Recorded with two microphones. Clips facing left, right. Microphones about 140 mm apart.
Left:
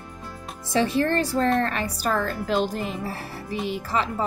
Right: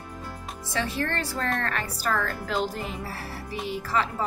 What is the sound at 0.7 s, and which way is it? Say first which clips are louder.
A woman's voice: left 7 dB; 20° left (ahead or behind).